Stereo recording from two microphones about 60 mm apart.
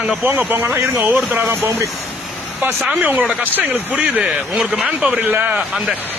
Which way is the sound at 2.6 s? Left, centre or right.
Right.